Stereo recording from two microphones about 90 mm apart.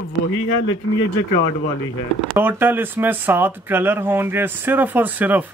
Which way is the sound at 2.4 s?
20° right (ahead or behind).